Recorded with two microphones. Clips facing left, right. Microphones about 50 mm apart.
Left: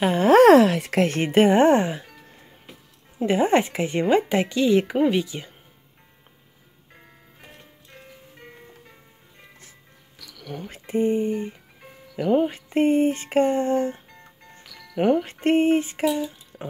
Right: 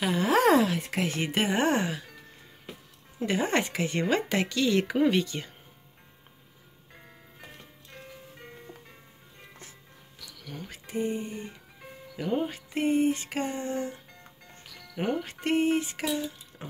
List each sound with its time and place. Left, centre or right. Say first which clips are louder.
0.0 s music: left 9 dB; left
0.4 s speech: left 9 dB; left
1.2 s speech: left 10 dB; left
3.2 s speech: left 7 dB; left
5.1 s speech: left 3 dB; centre
10.4 s music: left 7 dB; left
12.2 s speech: left 9 dB; left
12.5 s music: left 6 dB; left
16.5 s music: left 7 dB; centre